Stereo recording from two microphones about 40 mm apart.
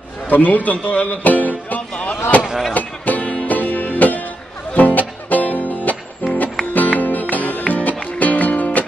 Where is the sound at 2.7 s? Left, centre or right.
Left.